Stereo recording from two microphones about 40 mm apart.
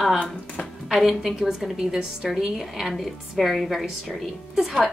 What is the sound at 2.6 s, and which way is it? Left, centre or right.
A woman's voice, centre.